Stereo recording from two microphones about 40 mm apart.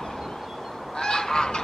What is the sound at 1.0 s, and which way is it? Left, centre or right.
Goose, centre.